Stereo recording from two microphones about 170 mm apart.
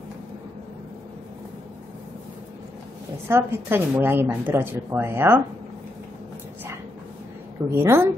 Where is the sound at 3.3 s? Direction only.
15° right (ahead or behind).